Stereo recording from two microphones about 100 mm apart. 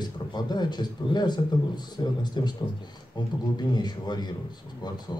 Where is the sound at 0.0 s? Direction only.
45° left (ahead or behind).